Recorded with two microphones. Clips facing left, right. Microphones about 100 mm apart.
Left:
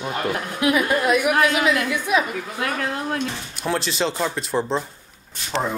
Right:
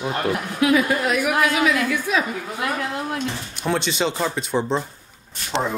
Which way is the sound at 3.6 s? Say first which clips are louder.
Right 1 dB; centre (ahead or behind).